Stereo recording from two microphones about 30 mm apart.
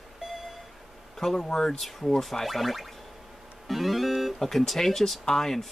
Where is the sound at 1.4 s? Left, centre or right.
Centre.